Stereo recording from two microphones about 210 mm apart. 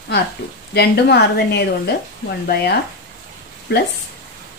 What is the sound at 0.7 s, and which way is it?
A woman's voice, 50° left (ahead or behind).